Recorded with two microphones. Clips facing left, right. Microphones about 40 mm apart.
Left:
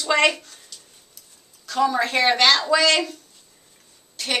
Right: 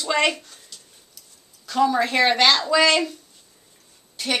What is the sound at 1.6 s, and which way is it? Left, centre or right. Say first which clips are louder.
Speech: right 1 dB; centre.